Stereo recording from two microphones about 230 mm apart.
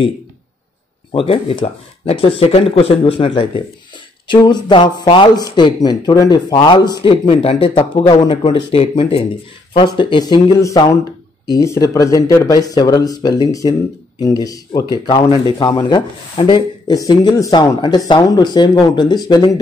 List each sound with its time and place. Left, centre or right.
1.1 s speech: left